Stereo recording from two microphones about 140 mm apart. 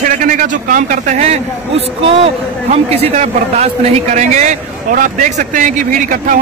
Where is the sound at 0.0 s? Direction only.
75° right (ahead or behind).